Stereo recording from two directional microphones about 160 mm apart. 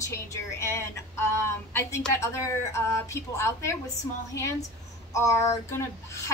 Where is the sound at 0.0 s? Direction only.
20° left (ahead or behind).